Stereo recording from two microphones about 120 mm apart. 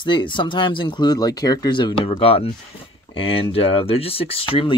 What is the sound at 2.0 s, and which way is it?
Speech, 50° left (ahead or behind).